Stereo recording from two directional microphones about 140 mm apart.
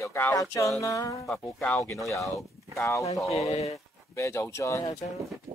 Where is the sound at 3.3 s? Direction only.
50° left (ahead or behind).